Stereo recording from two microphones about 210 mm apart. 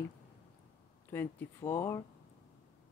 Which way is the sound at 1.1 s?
10° left (ahead or behind).